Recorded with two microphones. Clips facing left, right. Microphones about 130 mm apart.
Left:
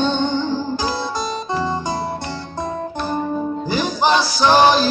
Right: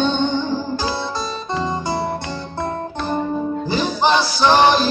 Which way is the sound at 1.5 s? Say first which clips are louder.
Even; 20° right (ahead or behind).